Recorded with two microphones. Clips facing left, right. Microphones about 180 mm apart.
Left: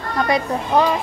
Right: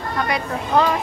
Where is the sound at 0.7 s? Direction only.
10° left (ahead or behind).